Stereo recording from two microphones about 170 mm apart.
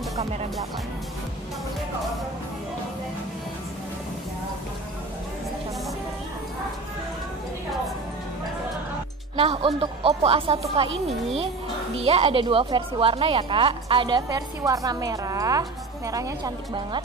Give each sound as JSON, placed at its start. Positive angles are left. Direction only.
{"t": 0.2, "sound": "a woman's voice", "side_deg": -40}
{"t": 9.4, "sound": "a woman's voice", "side_deg": -35}
{"t": 11.9, "sound": "a woman's voice", "side_deg": -35}